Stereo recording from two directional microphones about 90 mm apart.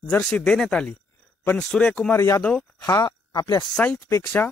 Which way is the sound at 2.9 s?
45° left (ahead or behind).